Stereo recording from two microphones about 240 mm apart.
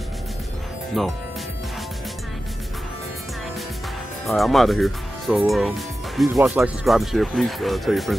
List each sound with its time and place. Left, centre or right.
1.0 s speech: centre
4.3 s speech: centre